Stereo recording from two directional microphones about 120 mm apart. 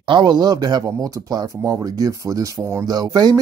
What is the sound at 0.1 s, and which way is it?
Speech, 35° right (ahead or behind).